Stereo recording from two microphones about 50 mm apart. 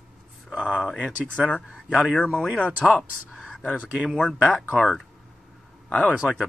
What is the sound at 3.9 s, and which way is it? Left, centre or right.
Speech, centre.